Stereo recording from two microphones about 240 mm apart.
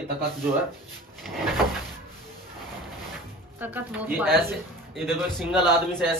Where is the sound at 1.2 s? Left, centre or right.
Centre.